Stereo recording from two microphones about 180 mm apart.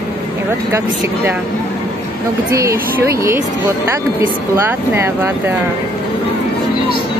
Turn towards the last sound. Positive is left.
turn(degrees=-15)  # may be behind; listen again after turning